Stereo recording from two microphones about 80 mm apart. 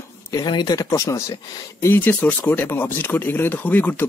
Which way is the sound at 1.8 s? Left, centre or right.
Left.